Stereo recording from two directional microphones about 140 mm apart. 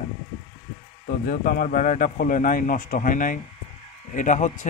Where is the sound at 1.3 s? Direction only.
85° left.